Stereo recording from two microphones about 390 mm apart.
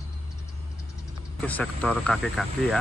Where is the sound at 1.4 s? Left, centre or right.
Centre.